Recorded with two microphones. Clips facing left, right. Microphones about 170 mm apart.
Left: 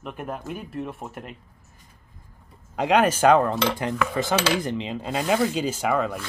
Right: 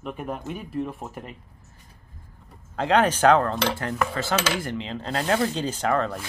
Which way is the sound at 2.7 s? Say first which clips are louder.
Left 1 dB; 10° left (ahead or behind).